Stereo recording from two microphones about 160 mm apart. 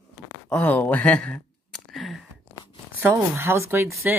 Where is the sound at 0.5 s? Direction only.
10° left (ahead or behind).